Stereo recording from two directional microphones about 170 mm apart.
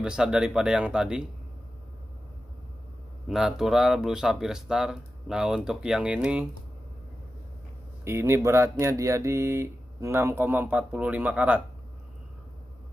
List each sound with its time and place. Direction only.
0.0 s speech: 5° right (ahead or behind)
3.3 s speech: centre (ahead or behind)
8.0 s speech: 15° right (ahead or behind)